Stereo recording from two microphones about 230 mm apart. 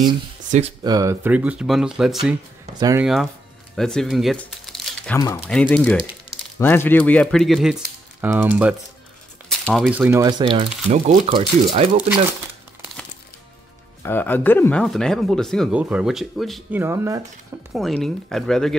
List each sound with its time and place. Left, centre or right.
0.5 s speech: right; by 2.3 s centre
2.8 s speech: centre
3.7 s speech: centre; by 12.0 s right
14.0 s speech: centre
16.8 s speech: centre
17.7 s speech: centre